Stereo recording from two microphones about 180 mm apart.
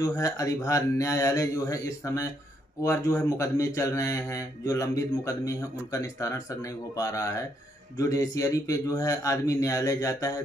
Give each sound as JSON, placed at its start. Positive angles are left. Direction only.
{"t": 0.0, "sound": "speech", "side_deg": 20}